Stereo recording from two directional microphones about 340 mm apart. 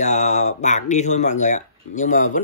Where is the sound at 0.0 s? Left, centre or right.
Left.